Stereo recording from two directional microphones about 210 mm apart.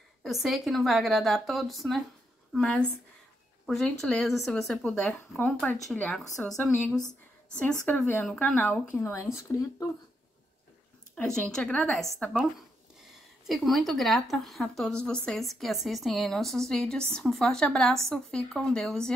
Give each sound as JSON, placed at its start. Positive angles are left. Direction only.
{"t": 0.2, "sound": "a woman's voice", "side_deg": 0}
{"t": 11.1, "sound": "a woman's voice", "side_deg": 5}
{"t": 13.5, "sound": "a woman's voice", "side_deg": 0}